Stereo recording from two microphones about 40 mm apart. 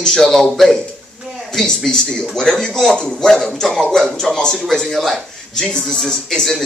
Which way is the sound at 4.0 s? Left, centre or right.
Centre.